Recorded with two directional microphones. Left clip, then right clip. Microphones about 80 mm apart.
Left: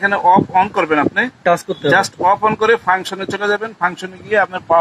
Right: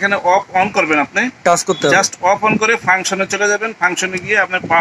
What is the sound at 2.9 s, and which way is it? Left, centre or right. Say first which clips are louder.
A man's voice: right 2 dB; left.